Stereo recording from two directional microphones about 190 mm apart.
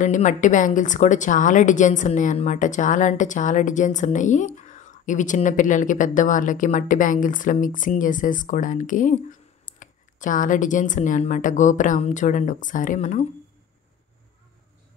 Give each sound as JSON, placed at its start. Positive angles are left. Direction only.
{"t": 0.0, "sound": "speech", "side_deg": 40}